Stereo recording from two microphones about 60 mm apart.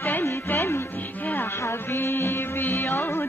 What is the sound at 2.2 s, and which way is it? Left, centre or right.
Music, left.